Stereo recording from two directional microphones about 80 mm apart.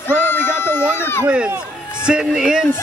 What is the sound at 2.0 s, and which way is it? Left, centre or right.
Speech, centre.